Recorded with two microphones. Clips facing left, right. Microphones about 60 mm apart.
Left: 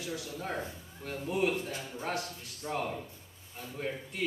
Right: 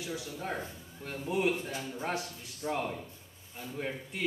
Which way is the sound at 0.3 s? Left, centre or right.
Centre.